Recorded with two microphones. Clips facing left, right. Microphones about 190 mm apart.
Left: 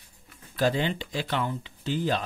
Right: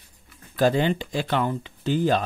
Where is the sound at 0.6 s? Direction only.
45° right (ahead or behind).